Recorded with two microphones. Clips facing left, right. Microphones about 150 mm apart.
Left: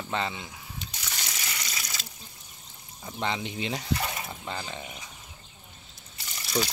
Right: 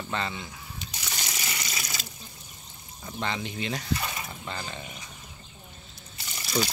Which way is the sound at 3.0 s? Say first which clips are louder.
Left 1 dB; 15° left (ahead or behind).